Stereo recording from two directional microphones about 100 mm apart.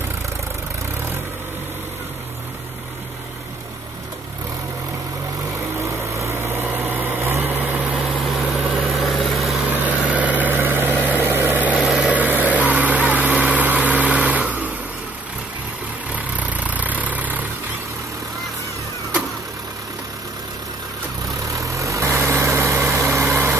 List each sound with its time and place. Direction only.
6.1 s a sound: 25° right (ahead or behind)
8.8 s vehicle: centre (ahead or behind)
9.7 s vehicle: 15° right (ahead or behind)
11.8 s vehicle: 10° right (ahead or behind)
16.1 s vehicle: 15° right (ahead or behind)
21.5 s vehicle: 30° right (ahead or behind)